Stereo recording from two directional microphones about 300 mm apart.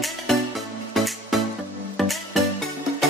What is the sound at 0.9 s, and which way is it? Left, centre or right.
Music, centre.